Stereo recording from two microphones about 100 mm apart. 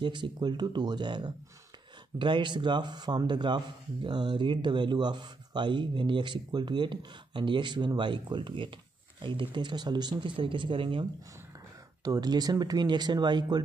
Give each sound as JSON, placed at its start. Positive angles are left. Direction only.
{"t": 0.0, "sound": "speech", "side_deg": -50}
{"t": 12.0, "sound": "speech", "side_deg": -40}